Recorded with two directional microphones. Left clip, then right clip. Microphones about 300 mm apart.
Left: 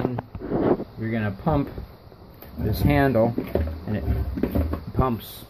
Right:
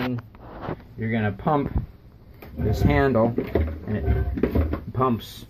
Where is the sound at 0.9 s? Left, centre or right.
Centre.